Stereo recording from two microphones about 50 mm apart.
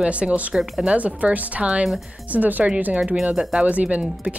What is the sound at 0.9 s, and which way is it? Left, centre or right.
Speech, right.